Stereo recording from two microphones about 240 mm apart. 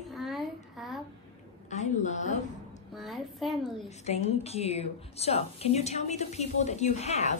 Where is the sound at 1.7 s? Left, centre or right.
Left.